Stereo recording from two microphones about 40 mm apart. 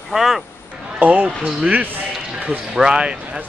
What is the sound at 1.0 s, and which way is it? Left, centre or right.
A man's voice, right.